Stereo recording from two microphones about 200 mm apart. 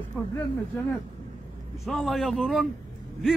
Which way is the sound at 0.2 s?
10° left (ahead or behind).